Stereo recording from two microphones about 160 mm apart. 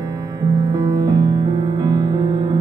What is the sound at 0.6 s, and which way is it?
Music, 25° right (ahead or behind).